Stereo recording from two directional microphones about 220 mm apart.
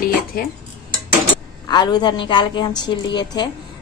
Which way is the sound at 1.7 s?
20° left (ahead or behind).